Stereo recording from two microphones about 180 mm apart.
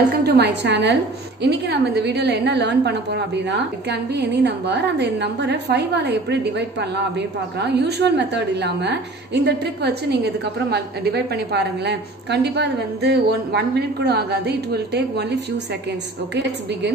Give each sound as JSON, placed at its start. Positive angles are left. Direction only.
{"t": 0.1, "sound": "a woman's voice", "side_deg": -65}